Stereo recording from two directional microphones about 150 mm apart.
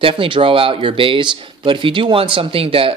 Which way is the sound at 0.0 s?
35° right (ahead or behind).